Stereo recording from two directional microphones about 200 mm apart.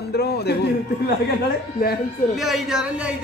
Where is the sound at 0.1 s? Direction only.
55° left (ahead or behind).